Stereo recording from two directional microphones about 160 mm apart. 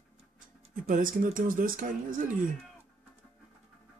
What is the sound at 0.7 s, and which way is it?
Speech, 55° right (ahead or behind).